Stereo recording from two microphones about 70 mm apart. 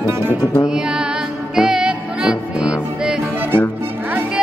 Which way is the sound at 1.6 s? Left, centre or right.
Centre.